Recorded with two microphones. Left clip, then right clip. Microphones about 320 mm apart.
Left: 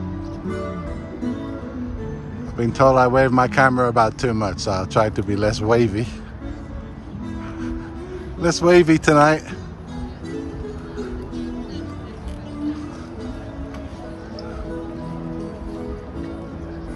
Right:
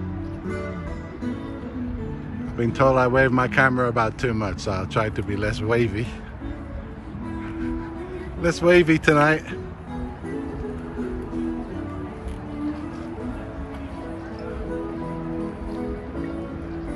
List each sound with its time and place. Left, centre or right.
0.5 s music: left
2.5 s speech: centre
8.4 s speech: centre